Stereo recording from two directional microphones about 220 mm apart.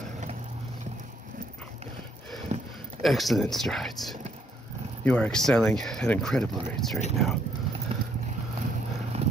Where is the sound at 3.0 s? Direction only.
Centre (ahead or behind).